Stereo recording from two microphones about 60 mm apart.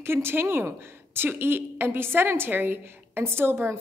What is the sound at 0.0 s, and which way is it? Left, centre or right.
A woman's voice, right.